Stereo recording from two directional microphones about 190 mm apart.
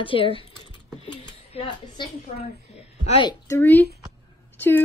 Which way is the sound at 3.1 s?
25° left (ahead or behind).